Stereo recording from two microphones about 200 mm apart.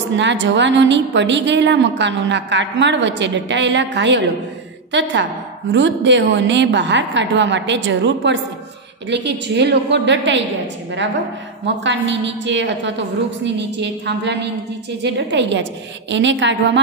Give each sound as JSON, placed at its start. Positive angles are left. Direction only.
{"t": 0.1, "sound": "a woman's voice", "side_deg": -65}
{"t": 11.6, "sound": "a woman's voice", "side_deg": -65}